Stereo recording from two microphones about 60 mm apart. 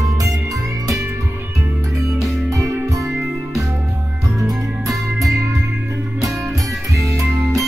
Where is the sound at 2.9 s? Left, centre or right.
Right.